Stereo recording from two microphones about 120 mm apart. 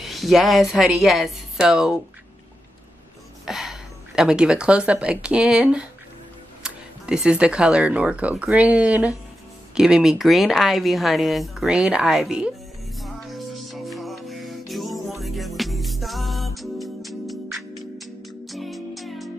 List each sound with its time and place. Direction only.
0.0 s speech: centre (ahead or behind)
3.4 s speech: 5° right (ahead or behind)
13.0 s music: centre (ahead or behind)